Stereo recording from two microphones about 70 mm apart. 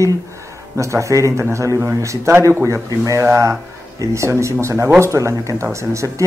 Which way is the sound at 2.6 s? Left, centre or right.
Right.